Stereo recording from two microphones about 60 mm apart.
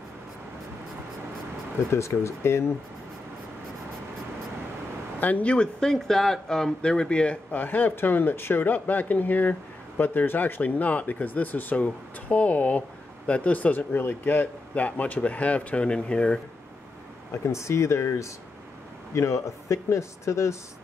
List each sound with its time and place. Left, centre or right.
1.9 s speech: left
5.2 s speech: left
5.8 s speech: centre
7.5 s speech: left
17.3 s speech: left